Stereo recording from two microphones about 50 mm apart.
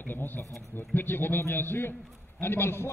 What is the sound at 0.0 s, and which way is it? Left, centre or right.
A man's voice, left.